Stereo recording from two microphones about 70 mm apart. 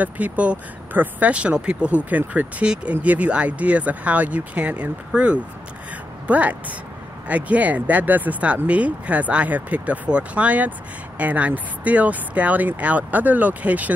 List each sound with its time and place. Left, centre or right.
0.0 s speech: right